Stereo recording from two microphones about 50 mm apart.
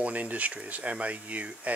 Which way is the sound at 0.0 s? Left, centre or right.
Right.